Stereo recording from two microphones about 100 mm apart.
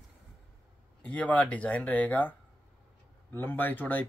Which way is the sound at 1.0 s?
15° left (ahead or behind).